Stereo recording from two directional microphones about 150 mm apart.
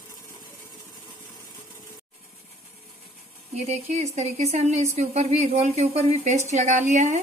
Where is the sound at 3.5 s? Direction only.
45° right (ahead or behind).